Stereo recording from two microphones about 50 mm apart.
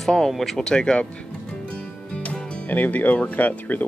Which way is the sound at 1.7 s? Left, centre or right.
Left.